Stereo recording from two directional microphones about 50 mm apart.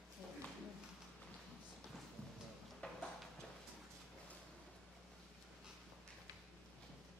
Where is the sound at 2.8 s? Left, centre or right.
Left.